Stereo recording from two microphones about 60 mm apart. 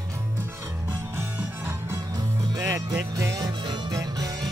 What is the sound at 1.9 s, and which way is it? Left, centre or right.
Music, right.